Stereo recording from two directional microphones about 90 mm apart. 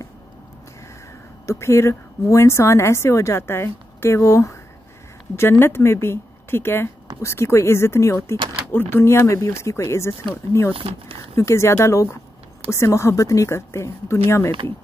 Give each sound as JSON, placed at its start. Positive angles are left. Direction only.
{"t": 1.4, "sound": "a woman's voice", "side_deg": 30}
{"t": 10.7, "sound": "speech", "side_deg": -90}
{"t": 11.3, "sound": "a woman's voice", "side_deg": 30}